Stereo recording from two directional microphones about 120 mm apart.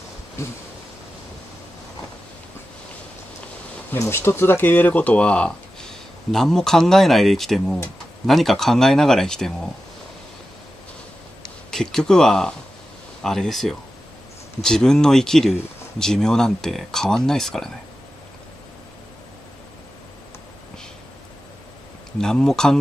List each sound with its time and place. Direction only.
0.4 s a sound: 25° left (ahead or behind)
3.9 s speech: 20° left (ahead or behind); by 9.7 s 5° left (ahead or behind)
11.7 s speech: 5° left (ahead or behind)
22.2 s speech: 5° left (ahead or behind)